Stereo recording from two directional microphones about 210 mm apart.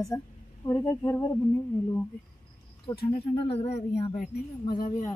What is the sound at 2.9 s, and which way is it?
A woman's voice, 25° left (ahead or behind).